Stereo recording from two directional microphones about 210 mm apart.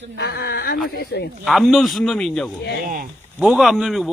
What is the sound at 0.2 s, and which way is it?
Speech, 50° left (ahead or behind).